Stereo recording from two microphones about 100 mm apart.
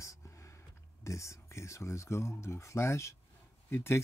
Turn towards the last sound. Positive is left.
turn(degrees=25)  # may be behind; listen again after turning